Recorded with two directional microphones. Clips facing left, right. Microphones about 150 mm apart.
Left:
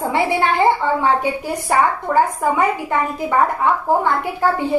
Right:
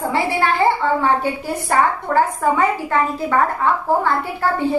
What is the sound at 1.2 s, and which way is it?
A woman's voice, 15° left (ahead or behind).